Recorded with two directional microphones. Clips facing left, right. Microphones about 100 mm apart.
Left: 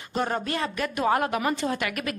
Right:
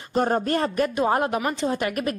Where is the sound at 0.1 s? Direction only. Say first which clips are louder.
Right 5 dB; 40° right (ahead or behind).